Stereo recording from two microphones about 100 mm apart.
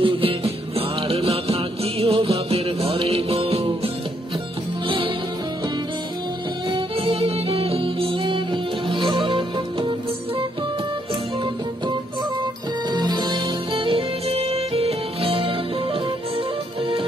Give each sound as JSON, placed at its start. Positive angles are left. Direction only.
{"t": 0.0, "sound": "music", "side_deg": -65}
{"t": 4.8, "sound": "music", "side_deg": -60}
{"t": 6.7, "sound": "music", "side_deg": -70}
{"t": 12.9, "sound": "music", "side_deg": -45}